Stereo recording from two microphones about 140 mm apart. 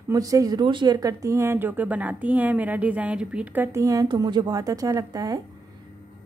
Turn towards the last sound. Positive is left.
turn(degrees=-25)  # may be behind; listen again after turning